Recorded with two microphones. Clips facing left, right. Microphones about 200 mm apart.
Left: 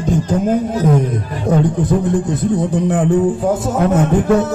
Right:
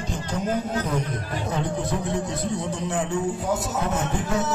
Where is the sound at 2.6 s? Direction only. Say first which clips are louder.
Left 11 dB; 55° left (ahead or behind).